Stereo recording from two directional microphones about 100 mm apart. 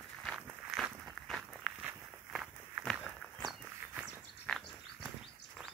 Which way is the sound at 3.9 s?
10° right (ahead or behind).